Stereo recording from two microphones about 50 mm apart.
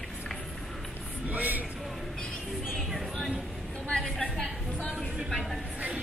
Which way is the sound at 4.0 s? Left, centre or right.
Centre.